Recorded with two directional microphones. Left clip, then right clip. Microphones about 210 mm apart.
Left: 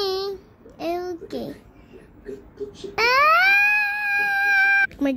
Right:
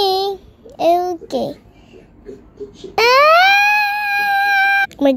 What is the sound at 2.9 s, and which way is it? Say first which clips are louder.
Speech: right 7 dB; 25° right (ahead or behind).